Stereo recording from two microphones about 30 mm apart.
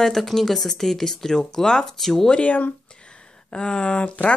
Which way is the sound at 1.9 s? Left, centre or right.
Centre.